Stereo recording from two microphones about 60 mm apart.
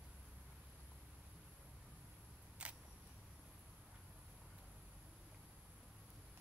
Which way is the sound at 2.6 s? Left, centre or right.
Centre.